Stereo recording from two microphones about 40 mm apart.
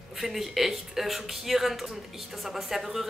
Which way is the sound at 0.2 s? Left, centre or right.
Centre.